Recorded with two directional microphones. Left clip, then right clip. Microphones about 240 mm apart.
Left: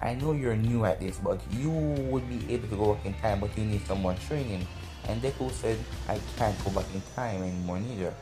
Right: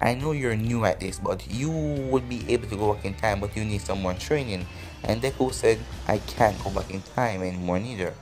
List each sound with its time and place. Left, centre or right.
0.0 s speech: right